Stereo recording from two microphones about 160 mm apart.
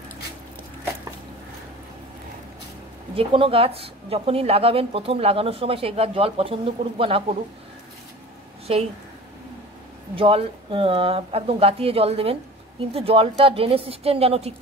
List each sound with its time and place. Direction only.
3.2 s speech: 35° right (ahead or behind)
8.7 s speech: 35° right (ahead or behind)
10.1 s speech: 35° right (ahead or behind)